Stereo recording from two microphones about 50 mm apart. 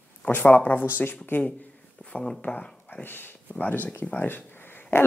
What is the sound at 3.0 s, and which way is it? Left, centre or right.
Speech, left.